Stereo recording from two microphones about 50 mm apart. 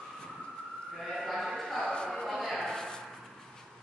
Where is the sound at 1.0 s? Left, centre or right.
Centre.